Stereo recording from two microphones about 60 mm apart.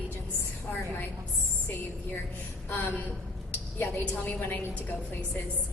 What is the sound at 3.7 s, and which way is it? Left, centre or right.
Speech, left.